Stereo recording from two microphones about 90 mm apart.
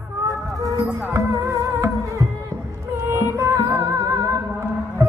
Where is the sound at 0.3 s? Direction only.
40° right (ahead or behind).